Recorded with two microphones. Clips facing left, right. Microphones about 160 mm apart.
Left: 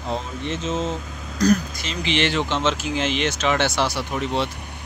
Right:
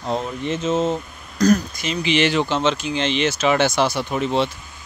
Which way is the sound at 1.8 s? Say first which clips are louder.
Right 4 dB; 10° right (ahead or behind).